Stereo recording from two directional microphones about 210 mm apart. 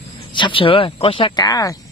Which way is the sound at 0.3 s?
25° left (ahead or behind).